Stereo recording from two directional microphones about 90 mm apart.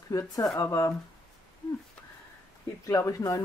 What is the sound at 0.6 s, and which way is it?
Speech, 40° left (ahead or behind).